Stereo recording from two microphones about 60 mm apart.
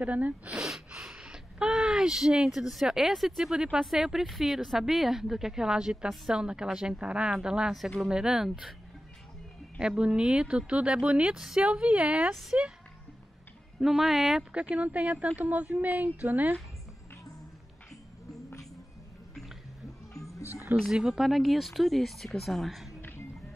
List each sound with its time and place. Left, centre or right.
0.0 s speech: right
0.6 s a woman's voice: centre
9.8 s a woman's voice: centre
11.3 s a woman's voice: centre
11.6 s speech: right
13.7 s speech: centre
14.5 s speech: right
20.2 s music: left
20.8 s speech: centre